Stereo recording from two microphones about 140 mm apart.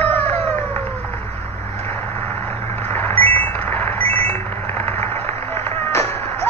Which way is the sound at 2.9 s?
15° left (ahead or behind).